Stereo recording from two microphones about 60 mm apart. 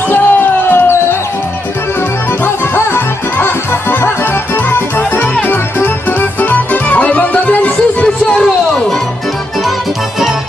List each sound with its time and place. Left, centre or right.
0.1 s music: left
2.4 s music: left
4.6 s music: left